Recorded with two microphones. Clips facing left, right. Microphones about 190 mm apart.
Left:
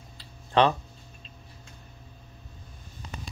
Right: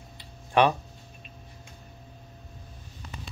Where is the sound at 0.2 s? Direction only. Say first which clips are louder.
Even; 15° right (ahead or behind).